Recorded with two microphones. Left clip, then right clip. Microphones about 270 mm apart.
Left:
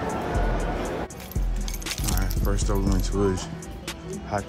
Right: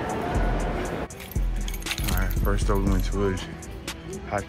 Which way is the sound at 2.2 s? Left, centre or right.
Centre.